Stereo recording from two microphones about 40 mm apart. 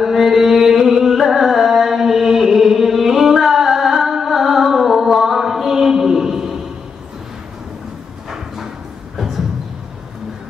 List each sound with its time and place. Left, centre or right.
0.0 s music: centre